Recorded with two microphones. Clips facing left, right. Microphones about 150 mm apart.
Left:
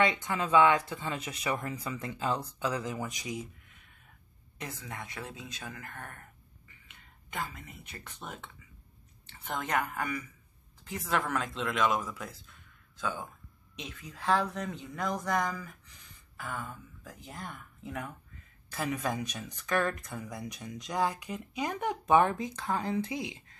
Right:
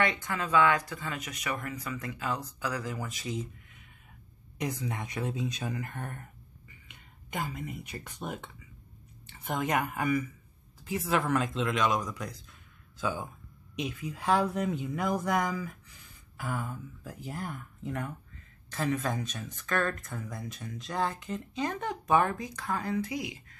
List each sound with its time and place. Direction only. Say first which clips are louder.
0.0 s speech: left 1 dB; 20° left (ahead or behind)
4.6 s speech: right 7 dB; 15° right (ahead or behind); by 12.5 s 5° left (ahead or behind)
13.0 s speech: right 3 dB; 10° right (ahead or behind); by 23.4 s 25° left (ahead or behind)